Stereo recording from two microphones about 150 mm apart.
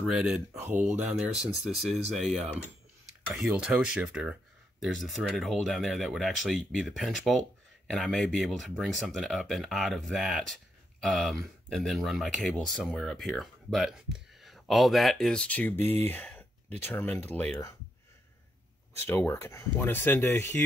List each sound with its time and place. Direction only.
0.0 s speech: centre (ahead or behind)
0.5 s speech: 15° right (ahead or behind); by 17.7 s 15° left (ahead or behind)
19.0 s speech: 15° left (ahead or behind)